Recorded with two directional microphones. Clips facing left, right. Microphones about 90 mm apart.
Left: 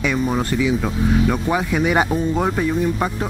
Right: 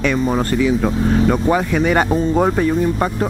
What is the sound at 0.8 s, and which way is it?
Speech, 10° right (ahead or behind).